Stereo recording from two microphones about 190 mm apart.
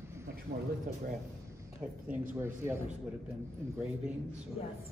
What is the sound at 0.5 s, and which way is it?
Speech, 45° right (ahead or behind).